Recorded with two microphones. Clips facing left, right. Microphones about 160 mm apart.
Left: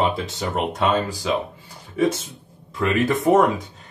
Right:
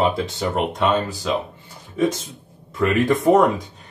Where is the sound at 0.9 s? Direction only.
10° left (ahead or behind).